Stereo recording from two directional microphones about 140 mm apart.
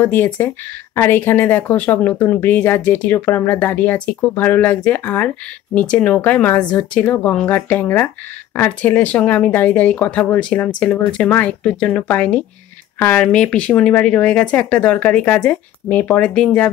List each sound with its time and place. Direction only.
0.0 s speech: 15° left (ahead or behind)